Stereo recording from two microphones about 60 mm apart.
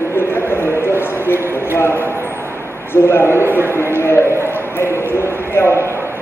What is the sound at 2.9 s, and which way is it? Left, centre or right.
Speech, left.